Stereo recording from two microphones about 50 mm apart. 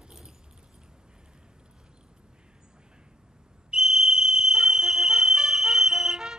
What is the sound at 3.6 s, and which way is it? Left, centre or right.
Whistle, centre.